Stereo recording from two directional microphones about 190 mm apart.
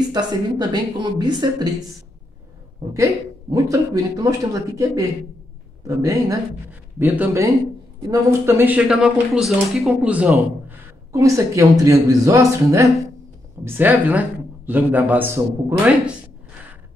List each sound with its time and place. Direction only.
0.1 s speech: 20° right (ahead or behind)
2.9 s a man's voice: 15° right (ahead or behind)